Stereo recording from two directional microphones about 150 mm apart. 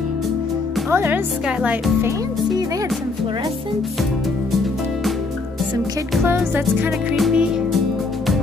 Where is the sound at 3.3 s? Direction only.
30° right (ahead or behind).